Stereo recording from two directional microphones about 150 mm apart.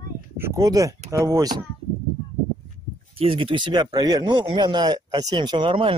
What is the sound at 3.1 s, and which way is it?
Speech, 40° right (ahead or behind).